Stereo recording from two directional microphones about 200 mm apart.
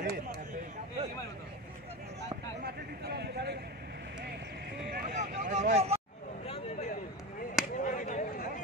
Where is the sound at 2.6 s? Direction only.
55° right (ahead or behind).